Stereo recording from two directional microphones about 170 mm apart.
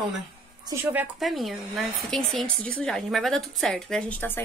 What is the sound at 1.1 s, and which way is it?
Speech, centre (ahead or behind).